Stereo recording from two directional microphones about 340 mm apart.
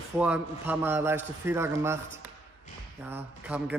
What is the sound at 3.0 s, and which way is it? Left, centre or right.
Speech, centre.